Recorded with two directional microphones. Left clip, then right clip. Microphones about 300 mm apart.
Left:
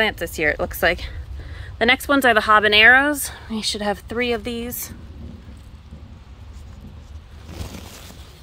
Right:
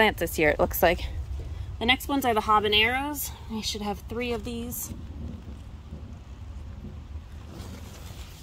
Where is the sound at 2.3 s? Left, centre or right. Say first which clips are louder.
Left 7 dB; centre.